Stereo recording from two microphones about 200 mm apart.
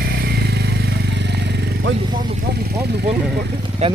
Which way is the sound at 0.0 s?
50° right (ahead or behind).